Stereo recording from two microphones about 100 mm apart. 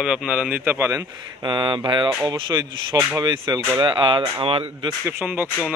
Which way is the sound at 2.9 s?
40° right (ahead or behind).